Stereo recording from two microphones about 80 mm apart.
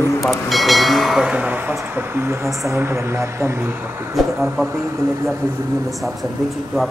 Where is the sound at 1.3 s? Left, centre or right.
Centre; by 3.5 s right.